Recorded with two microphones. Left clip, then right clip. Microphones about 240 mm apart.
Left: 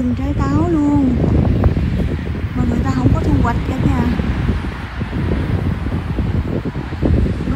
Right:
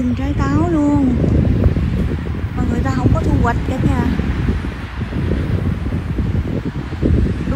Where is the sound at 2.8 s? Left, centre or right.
Centre.